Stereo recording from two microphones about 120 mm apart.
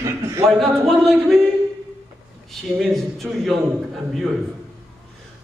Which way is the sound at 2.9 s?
Centre (ahead or behind).